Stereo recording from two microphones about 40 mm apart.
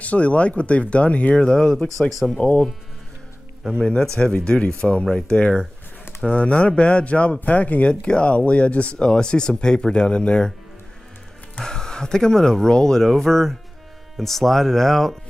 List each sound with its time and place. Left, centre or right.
0.0 s speech: left
1.3 s speech: centre
2.3 s speech: left
4.4 s speech: left
11.6 s speech: centre